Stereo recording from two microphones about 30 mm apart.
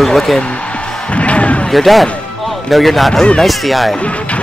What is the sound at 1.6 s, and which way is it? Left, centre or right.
Speech, centre.